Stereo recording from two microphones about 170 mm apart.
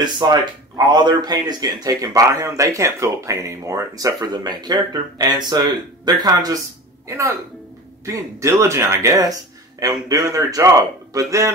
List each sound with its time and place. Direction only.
0.0 s speech: 25° right (ahead or behind)